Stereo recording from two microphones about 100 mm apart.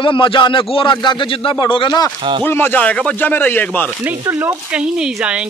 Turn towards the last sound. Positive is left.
turn(degrees=20)  # may be behind; listen again after turning